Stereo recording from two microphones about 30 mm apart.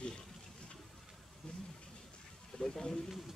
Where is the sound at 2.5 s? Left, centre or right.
Left.